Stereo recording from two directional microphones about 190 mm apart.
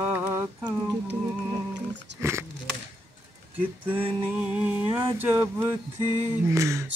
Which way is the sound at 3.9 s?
30° right (ahead or behind).